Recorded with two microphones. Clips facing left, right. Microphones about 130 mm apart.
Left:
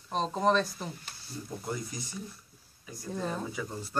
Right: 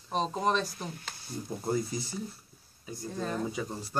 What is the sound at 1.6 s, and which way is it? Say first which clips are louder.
Speech: right 8 dB; 30° right (ahead or behind).